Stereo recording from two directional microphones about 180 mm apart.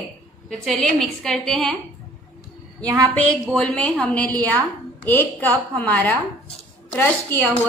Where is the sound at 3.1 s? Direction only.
5° left (ahead or behind).